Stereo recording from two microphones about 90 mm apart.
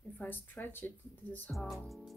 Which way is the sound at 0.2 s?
20° left (ahead or behind).